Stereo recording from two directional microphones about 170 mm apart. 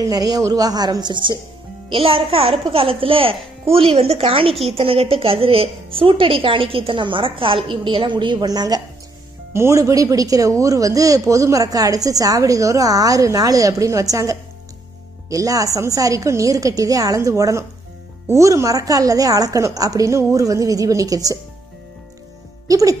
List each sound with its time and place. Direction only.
0.0 s a woman's voice: 25° right (ahead or behind)
22.7 s speech: 20° right (ahead or behind)